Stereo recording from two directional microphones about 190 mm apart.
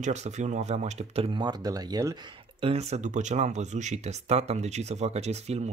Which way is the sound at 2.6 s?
35° right (ahead or behind).